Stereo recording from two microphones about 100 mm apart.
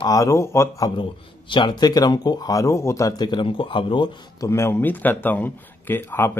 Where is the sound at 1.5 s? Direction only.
45° left (ahead or behind).